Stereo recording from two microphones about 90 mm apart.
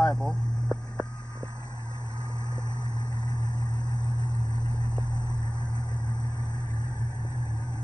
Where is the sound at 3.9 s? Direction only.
35° right (ahead or behind).